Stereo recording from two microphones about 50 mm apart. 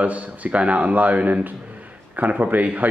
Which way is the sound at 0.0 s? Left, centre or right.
Right.